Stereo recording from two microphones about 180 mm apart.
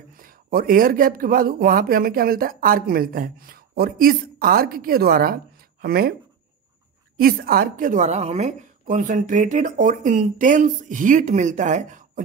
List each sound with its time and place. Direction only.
0.2 s speech: 55° right (ahead or behind)
7.2 s speech: 55° right (ahead or behind)